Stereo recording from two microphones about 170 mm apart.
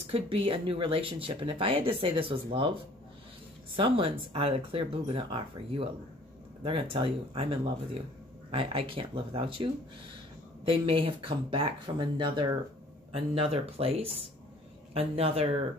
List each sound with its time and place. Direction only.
0.0 s speech: 35° right (ahead or behind)
3.7 s speech: 30° right (ahead or behind)